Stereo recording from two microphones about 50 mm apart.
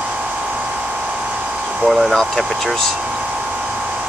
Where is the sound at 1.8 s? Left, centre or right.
Centre.